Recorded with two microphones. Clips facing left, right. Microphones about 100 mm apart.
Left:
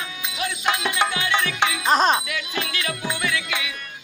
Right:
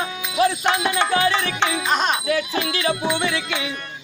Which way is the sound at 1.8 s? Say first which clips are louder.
Left 5 dB; 35° left (ahead or behind).